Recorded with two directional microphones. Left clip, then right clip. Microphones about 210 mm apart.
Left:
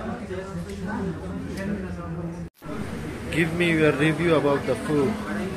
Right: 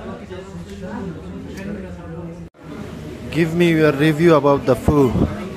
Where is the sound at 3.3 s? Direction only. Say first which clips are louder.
Right 6 dB; 30° right (ahead or behind).